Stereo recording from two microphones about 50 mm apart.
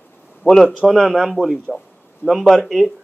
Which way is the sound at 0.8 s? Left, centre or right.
Centre.